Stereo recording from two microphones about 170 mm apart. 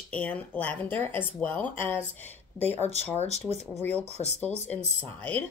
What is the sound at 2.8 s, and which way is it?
Speech, 40° left (ahead or behind).